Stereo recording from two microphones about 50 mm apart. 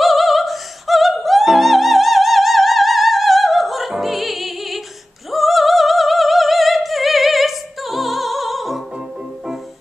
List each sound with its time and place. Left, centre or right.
0.0 s opera: centre
3.9 s music: centre
5.3 s opera: centre